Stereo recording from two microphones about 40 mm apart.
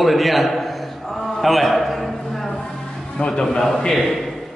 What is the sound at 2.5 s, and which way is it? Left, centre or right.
Music, centre.